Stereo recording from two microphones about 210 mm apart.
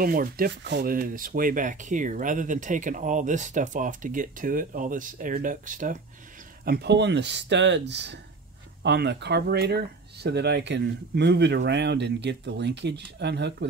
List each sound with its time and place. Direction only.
0.0 s speech: 45° right (ahead or behind)